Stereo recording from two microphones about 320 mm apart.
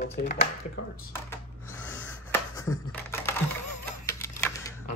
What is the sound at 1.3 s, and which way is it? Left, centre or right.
Gasp, centre.